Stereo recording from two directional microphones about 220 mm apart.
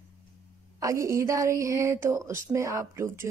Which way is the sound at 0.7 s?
15° right (ahead or behind).